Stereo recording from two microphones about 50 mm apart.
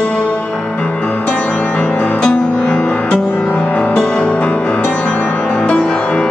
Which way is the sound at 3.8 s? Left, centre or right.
Centre.